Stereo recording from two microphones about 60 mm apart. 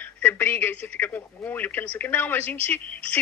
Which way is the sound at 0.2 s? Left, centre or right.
Left.